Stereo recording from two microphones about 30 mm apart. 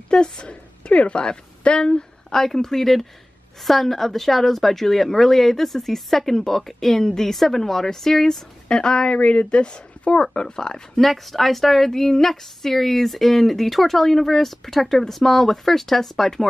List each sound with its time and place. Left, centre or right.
0.1 s a woman's voice: left
2.3 s a woman's voice: centre
8.6 s a woman's voice: left
10.2 s speech: left
11.0 s a woman's voice: centre